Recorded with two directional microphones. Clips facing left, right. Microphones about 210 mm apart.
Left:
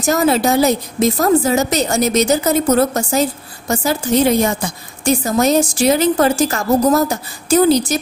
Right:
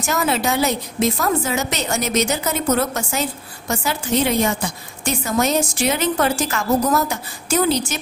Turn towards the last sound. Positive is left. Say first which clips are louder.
# left 7 dB
turn(degrees=40)  # may be behind; listen again after turning